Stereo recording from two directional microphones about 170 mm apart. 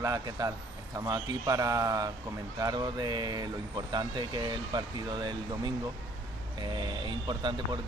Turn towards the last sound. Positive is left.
turn(degrees=-25)  # may be behind; listen again after turning